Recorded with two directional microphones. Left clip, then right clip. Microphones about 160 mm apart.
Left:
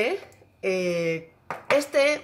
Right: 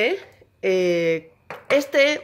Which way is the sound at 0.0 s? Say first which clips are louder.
Right 4 dB; 15° right (ahead or behind).